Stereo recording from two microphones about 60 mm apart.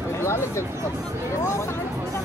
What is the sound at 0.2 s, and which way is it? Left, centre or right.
Speech, left.